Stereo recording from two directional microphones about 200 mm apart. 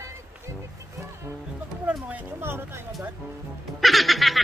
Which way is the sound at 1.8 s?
5° right (ahead or behind).